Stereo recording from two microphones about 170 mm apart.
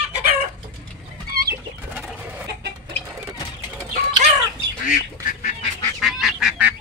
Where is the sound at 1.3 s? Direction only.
65° right (ahead or behind).